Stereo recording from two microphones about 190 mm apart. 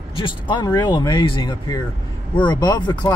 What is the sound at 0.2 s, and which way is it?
Speech, 25° left (ahead or behind).